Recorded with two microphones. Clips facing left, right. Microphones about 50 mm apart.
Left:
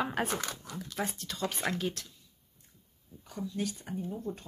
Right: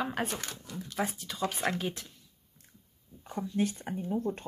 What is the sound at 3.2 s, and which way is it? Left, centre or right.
Speech, right.